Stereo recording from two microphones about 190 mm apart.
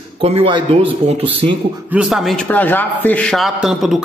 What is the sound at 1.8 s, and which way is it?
A man's voice, 5° right (ahead or behind).